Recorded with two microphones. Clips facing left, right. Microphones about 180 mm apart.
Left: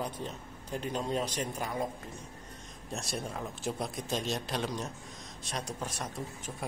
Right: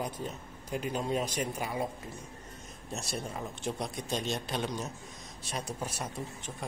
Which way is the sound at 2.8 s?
Centre (ahead or behind).